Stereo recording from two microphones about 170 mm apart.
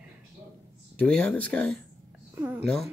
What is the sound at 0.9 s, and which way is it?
Speech, 5° left (ahead or behind).